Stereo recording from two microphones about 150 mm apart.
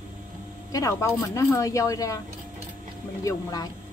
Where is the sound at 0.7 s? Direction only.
20° left (ahead or behind).